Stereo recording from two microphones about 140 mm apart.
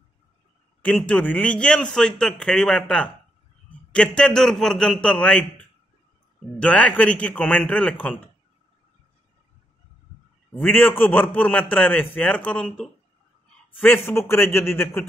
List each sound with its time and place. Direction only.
0.9 s a man's voice: 10° left (ahead or behind)
10.6 s a man's voice: 15° left (ahead or behind)
13.7 s a man's voice: 15° left (ahead or behind)